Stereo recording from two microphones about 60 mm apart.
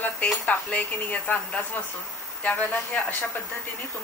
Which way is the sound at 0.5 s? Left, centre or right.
Left.